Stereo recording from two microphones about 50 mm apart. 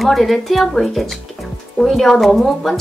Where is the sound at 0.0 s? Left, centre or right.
Centre.